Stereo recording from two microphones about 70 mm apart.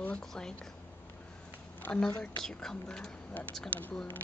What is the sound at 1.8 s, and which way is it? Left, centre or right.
A woman's voice, centre.